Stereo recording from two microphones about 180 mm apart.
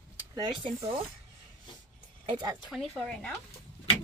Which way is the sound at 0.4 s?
30° right (ahead or behind).